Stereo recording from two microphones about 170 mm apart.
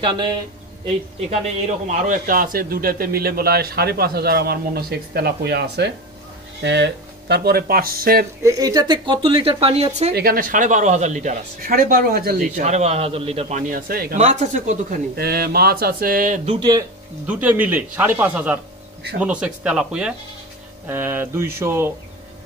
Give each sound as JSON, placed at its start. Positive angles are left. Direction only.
{"t": 0.0, "sound": "speech", "side_deg": -25}
{"t": 1.9, "sound": "speech", "side_deg": -50}
{"t": 8.4, "sound": "speech", "side_deg": -20}
{"t": 10.1, "sound": "speech", "side_deg": -60}
{"t": 12.5, "sound": "speech", "side_deg": -40}
{"t": 14.1, "sound": "speech", "side_deg": -40}
{"t": 15.1, "sound": "speech", "side_deg": -65}
{"t": 16.5, "sound": "speech", "side_deg": -25}
{"t": 17.3, "sound": "speech", "side_deg": -10}